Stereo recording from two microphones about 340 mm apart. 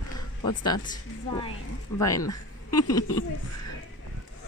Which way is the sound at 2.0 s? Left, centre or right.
Centre.